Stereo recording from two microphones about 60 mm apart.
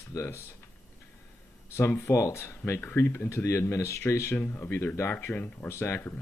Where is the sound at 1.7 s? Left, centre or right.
Left.